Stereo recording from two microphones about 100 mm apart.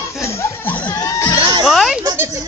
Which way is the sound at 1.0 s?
35° left (ahead or behind).